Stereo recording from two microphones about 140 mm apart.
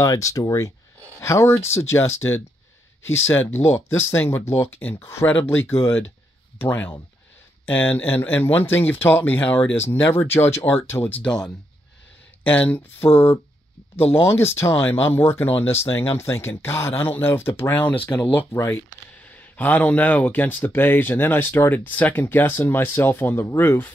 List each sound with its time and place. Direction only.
0.0 s speech: 20° left (ahead or behind)
14.1 s speech: 15° left (ahead or behind)